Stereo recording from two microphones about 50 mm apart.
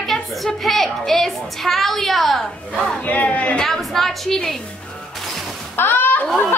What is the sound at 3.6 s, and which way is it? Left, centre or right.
Speech, centre.